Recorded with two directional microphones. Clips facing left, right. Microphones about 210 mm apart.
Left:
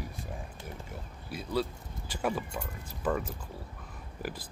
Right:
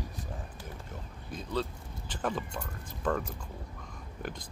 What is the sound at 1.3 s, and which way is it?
Speech, 10° left (ahead or behind).